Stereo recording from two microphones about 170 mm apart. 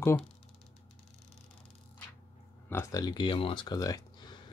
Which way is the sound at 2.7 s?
20° left (ahead or behind).